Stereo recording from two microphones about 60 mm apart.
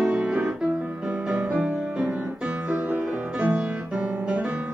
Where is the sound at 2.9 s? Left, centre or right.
Right.